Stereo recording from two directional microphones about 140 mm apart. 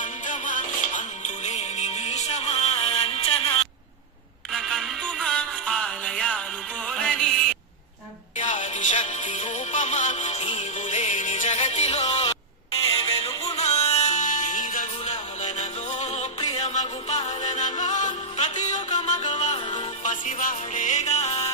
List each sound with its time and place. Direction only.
0.0 s music: 65° left (ahead or behind); by 3.6 s 45° left (ahead or behind)
4.5 s music: centre (ahead or behind)
8.4 s music: 65° left (ahead or behind)